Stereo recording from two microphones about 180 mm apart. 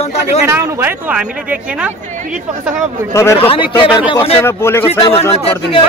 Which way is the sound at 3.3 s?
30° left (ahead or behind).